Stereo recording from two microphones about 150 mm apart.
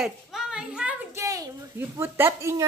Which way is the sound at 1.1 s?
20° right (ahead or behind).